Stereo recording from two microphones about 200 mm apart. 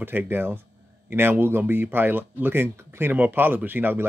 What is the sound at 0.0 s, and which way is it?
Speech, 10° right (ahead or behind).